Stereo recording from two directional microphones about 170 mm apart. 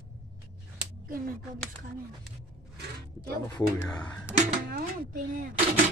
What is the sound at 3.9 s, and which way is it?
Speech, 5° left (ahead or behind).